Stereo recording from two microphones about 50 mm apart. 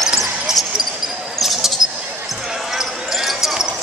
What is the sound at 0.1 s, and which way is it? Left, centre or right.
Basketball bounce, centre.